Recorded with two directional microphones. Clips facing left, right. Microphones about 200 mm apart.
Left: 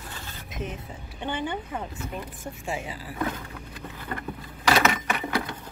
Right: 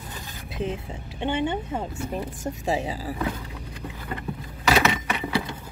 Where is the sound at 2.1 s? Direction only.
40° right (ahead or behind).